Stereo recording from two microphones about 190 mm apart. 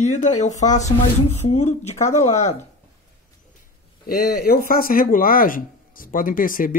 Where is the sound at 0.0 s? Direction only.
40° left (ahead or behind).